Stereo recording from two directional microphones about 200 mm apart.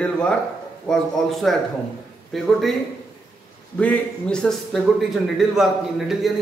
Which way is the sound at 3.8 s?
5° left (ahead or behind).